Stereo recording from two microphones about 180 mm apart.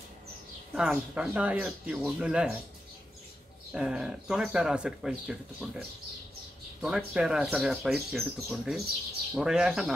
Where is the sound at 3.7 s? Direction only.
5° right (ahead or behind).